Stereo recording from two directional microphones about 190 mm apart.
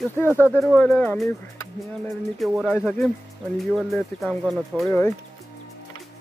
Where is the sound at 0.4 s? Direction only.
10° left (ahead or behind).